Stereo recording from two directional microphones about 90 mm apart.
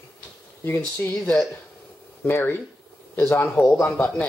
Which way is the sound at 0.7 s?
25° left (ahead or behind).